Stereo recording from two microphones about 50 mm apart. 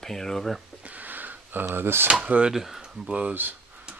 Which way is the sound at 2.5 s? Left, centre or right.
Centre.